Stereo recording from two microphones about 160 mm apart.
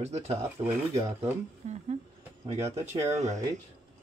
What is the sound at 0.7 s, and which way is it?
Speech, 15° right (ahead or behind).